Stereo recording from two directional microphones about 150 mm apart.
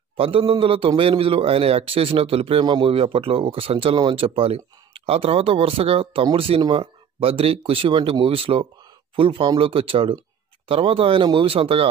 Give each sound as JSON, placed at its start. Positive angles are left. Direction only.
{"t": 0.2, "sound": "a man's voice", "side_deg": -40}